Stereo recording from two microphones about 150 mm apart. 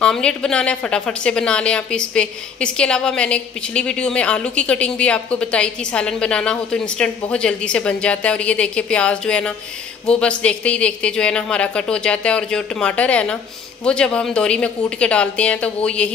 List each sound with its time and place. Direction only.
0.0 s a woman's voice: 5° left (ahead or behind)